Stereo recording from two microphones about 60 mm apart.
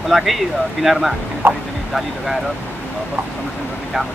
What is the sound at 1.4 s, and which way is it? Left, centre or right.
Speech, right.